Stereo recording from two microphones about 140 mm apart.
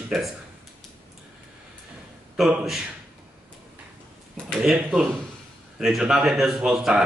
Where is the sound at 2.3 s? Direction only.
Centre (ahead or behind).